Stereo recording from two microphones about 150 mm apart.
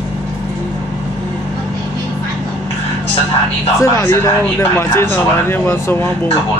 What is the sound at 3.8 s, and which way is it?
Speech, 15° left (ahead or behind).